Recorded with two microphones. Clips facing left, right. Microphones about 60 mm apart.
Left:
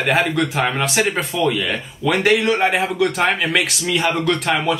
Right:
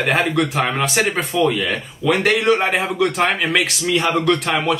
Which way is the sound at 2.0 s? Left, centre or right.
Centre.